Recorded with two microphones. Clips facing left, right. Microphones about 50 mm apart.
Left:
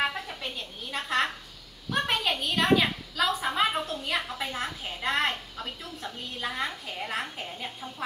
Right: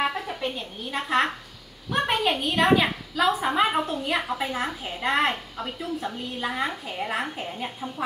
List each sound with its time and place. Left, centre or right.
0.3 s a woman's voice: centre